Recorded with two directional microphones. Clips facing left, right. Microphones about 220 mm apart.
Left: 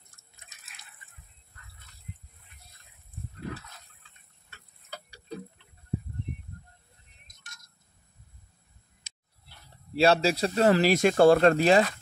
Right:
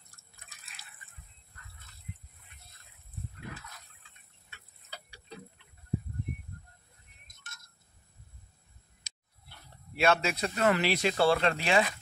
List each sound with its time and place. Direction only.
0.1 s drip: 20° left (ahead or behind)
4.9 s clock: 45° left (ahead or behind)
9.9 s speech: 30° left (ahead or behind)